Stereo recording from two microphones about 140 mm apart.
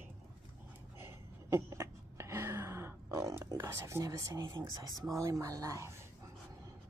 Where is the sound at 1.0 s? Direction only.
20° right (ahead or behind).